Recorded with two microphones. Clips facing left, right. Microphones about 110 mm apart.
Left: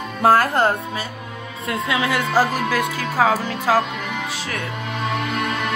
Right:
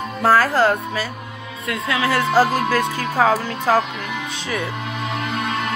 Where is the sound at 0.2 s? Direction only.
50° left (ahead or behind).